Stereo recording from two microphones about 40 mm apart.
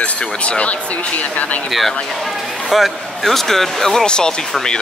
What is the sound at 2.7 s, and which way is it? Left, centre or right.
Speech, centre.